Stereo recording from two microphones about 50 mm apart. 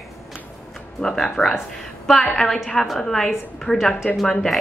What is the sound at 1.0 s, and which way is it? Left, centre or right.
Speech, centre.